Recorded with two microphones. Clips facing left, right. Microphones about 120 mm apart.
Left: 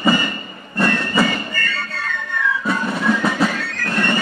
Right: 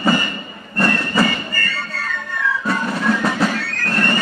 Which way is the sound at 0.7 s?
Centre (ahead or behind).